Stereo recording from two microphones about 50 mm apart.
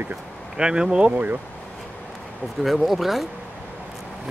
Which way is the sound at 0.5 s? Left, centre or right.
Centre.